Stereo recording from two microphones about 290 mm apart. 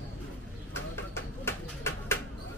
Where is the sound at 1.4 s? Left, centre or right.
Centre.